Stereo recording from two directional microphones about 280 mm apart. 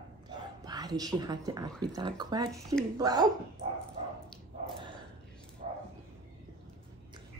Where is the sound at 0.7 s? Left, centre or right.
Centre.